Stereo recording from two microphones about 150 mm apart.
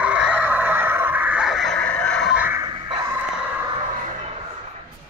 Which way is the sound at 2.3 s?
10° right (ahead or behind).